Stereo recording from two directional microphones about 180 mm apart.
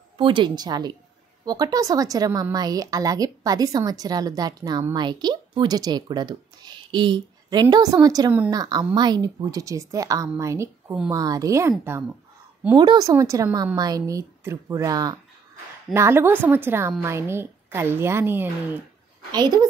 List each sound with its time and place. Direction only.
0.2 s a woman's voice: 25° right (ahead or behind)
12.7 s a woman's voice: 20° right (ahead or behind)
19.3 s a woman's voice: 25° right (ahead or behind)